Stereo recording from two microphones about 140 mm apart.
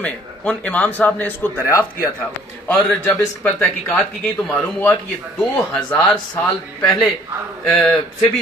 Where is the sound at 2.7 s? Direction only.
10° left (ahead or behind).